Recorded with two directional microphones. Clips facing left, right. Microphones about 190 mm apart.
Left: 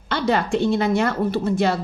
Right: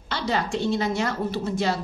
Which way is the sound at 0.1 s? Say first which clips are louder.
Left 5 dB; 55° left (ahead or behind).